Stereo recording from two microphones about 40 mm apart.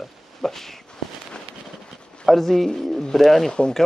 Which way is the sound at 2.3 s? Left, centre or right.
Centre.